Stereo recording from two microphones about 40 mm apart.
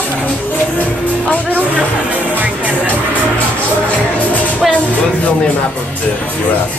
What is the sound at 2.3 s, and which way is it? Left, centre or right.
Music, right.